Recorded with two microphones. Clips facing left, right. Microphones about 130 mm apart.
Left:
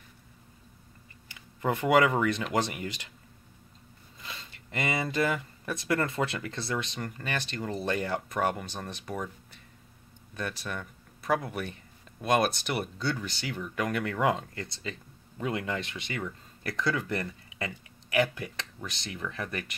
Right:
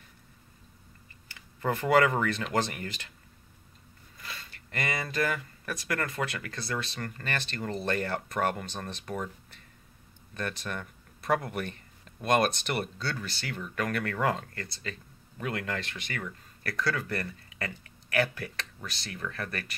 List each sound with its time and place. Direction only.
1.3 s speech: 15° left (ahead or behind)
4.2 s speech: 20° left (ahead or behind)
10.3 s speech: 10° left (ahead or behind)